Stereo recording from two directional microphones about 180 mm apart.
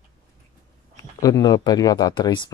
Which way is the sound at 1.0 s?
20° left (ahead or behind).